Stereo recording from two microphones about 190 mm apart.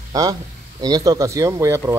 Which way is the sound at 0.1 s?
20° right (ahead or behind).